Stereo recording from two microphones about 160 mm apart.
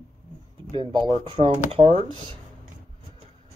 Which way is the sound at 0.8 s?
30° right (ahead or behind).